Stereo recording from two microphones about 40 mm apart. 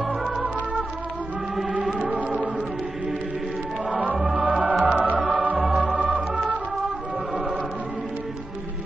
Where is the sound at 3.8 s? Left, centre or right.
Right.